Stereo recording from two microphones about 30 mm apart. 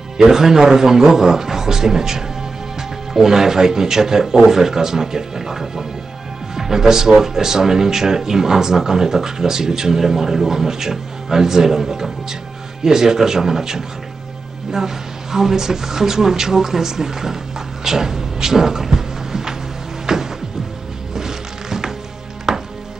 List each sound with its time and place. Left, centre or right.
0.2 s speech: centre
20.1 s music: centre
22.5 s chopping: centre